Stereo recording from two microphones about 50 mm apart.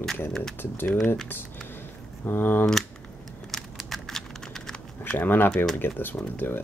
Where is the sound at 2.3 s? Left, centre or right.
Left.